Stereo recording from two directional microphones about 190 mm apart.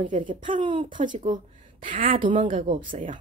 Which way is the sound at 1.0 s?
35° right (ahead or behind).